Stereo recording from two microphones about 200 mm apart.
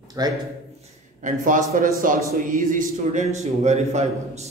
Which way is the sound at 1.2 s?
40° right (ahead or behind).